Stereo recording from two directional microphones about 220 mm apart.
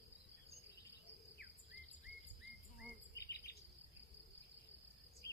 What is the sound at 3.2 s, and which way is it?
Insect, 45° left (ahead or behind).